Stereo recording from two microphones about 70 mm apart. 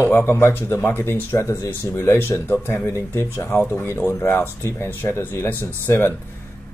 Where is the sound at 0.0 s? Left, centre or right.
Left.